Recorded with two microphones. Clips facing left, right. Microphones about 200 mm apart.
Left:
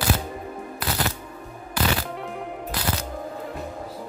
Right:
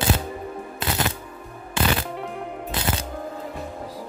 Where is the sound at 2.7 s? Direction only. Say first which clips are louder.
Right 2 dB; 25° right (ahead or behind).